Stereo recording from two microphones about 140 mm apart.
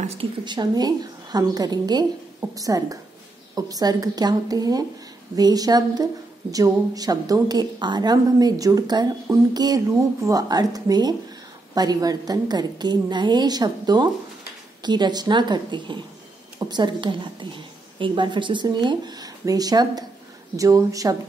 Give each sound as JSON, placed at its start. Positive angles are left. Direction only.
{"t": 0.0, "sound": "a woman's voice", "side_deg": -50}
{"t": 0.5, "sound": "a woman's voice", "side_deg": -30}